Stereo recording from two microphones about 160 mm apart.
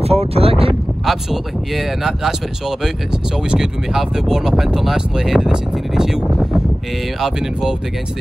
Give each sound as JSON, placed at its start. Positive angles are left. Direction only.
{"t": 0.0, "sound": "speech", "side_deg": -40}
{"t": 1.0, "sound": "speech", "side_deg": 0}
{"t": 3.5, "sound": "speech", "side_deg": -5}